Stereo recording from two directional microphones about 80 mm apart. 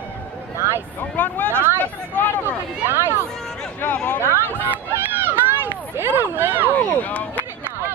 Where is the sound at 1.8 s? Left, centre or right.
Left.